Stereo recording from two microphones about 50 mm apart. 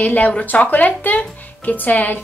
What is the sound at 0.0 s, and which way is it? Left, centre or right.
A woman's voice, left.